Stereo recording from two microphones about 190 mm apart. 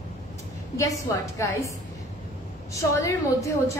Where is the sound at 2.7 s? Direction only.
15° left (ahead or behind).